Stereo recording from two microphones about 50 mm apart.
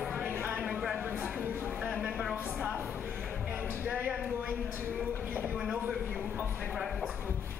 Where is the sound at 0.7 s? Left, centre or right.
Centre.